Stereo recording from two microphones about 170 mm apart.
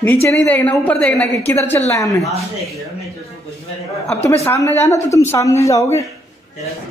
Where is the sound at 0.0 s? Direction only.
15° left (ahead or behind).